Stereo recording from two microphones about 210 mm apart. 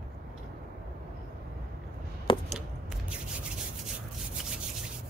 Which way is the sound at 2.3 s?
25° left (ahead or behind).